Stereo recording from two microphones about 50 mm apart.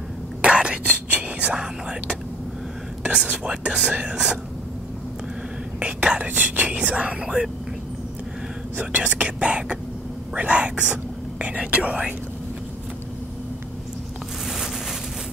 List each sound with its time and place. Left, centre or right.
0.4 s whispering: right
0.8 s whispering: right
1.5 s speech: centre
5.8 s speech: right
8.7 s speech: right